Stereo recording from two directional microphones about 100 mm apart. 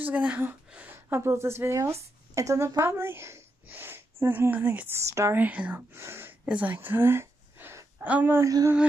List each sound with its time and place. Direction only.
0.0 s a woman's voice: 15° right (ahead or behind)
6.4 s speech: 15° right (ahead or behind)
8.5 s music: 35° right (ahead or behind)